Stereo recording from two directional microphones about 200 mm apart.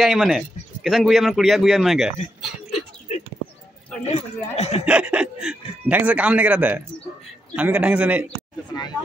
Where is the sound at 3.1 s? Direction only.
35° left (ahead or behind).